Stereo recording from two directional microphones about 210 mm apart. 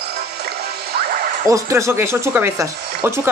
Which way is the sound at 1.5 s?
15° right (ahead or behind).